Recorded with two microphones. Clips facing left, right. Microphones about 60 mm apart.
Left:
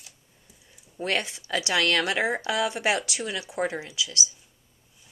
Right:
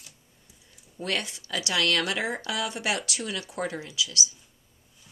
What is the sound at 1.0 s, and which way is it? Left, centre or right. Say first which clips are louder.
Speech: left 3 dB; left.